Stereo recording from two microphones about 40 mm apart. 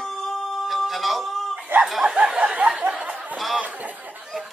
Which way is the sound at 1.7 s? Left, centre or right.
Right.